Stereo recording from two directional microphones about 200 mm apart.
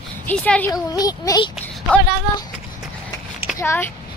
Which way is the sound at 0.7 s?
20° left (ahead or behind).